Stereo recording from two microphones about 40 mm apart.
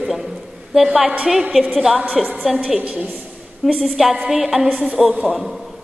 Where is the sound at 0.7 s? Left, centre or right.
Centre.